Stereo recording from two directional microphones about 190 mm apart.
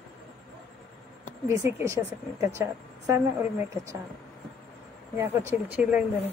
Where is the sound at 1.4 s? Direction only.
15° right (ahead or behind).